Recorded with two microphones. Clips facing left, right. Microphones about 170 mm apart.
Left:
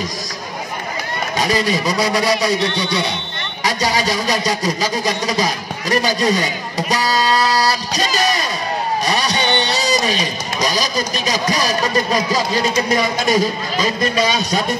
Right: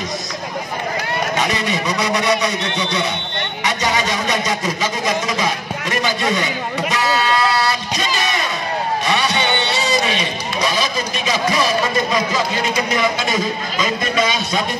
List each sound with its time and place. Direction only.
1.4 s a man's voice: 35° left (ahead or behind)
3.6 s a sound: 35° left (ahead or behind)
5.0 s a man's voice: 35° left (ahead or behind)
6.9 s a sound: 35° left (ahead or behind)
9.0 s music: 40° left (ahead or behind)
12.9 s a man's voice: 40° left (ahead or behind)